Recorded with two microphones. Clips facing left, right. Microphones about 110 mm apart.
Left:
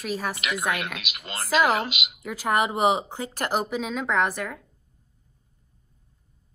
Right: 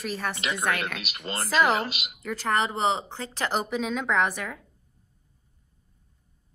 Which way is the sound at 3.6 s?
Centre (ahead or behind).